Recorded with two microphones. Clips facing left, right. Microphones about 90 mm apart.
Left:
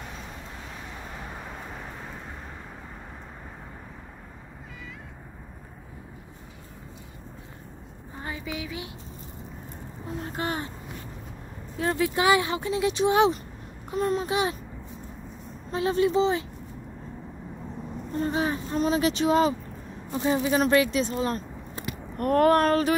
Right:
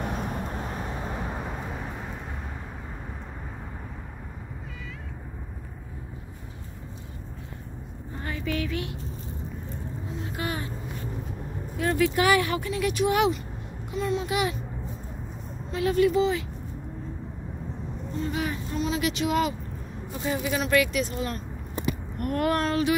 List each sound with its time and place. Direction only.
0.0 s vehicle: 55° right (ahead or behind)
8.2 s a sound: 20° left (ahead or behind)
8.5 s speech: 5° left (ahead or behind)
10.2 s speech: 30° left (ahead or behind)
11.7 s speech: 25° left (ahead or behind)
13.8 s speech: 45° left (ahead or behind)
15.7 s speech: 30° left (ahead or behind)
18.1 s speech: 35° left (ahead or behind)